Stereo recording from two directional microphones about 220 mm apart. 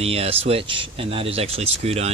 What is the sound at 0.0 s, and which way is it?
Speech, 25° right (ahead or behind).